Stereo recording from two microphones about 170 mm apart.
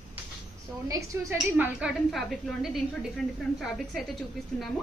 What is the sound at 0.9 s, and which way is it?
A woman's voice, 20° right (ahead or behind).